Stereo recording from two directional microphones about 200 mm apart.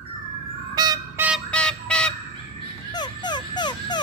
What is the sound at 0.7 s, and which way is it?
Vehicle, 20° right (ahead or behind).